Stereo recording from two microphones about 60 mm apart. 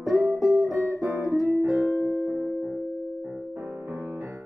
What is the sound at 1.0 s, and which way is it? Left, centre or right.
Music, right.